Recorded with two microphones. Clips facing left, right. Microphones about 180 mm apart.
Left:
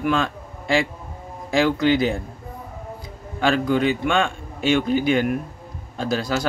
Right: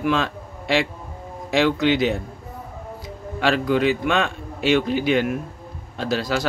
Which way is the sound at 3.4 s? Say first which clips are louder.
Even; centre (ahead or behind).